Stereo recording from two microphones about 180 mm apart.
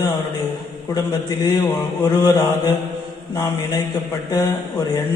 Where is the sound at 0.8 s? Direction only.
20° left (ahead or behind).